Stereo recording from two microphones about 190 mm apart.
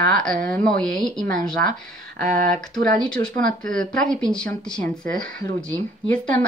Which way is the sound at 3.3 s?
45° right (ahead or behind).